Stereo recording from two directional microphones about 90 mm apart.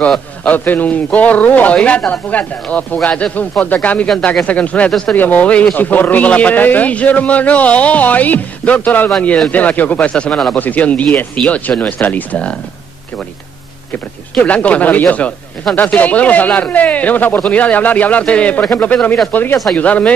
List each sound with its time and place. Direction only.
0.4 s speech: 20° left (ahead or behind)
14.4 s speech: 15° left (ahead or behind)